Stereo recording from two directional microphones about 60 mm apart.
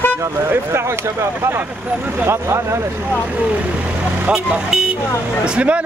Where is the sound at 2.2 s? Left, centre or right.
Right.